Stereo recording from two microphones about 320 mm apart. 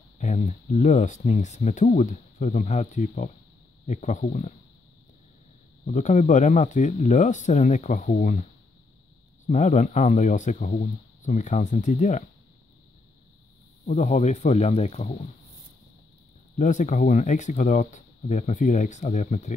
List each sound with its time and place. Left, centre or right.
0.2 s speech: left
5.9 s speech: left
9.5 s speech: left
13.8 s speech: left
16.5 s speech: left